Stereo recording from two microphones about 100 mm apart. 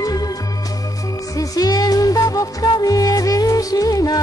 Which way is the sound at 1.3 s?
40° left (ahead or behind).